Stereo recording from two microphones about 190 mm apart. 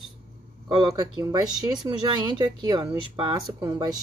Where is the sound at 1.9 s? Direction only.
25° right (ahead or behind).